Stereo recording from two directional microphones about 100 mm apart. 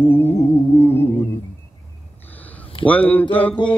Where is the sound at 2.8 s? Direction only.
15° left (ahead or behind).